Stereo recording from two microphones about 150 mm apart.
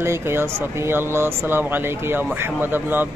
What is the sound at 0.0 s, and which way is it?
Speech, 15° right (ahead or behind).